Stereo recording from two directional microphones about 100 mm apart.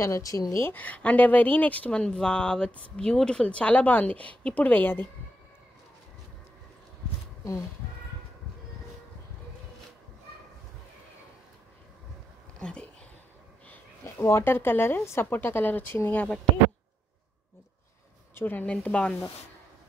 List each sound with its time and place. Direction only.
0.0 s speech: 35° left (ahead or behind)
12.5 s a sound: 10° left (ahead or behind)
14.0 s speech: 25° left (ahead or behind)
18.3 s speech: 20° left (ahead or behind)